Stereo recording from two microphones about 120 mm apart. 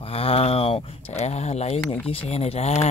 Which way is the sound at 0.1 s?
55° left (ahead or behind).